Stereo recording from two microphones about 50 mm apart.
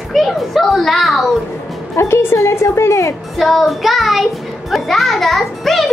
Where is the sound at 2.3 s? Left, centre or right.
Left.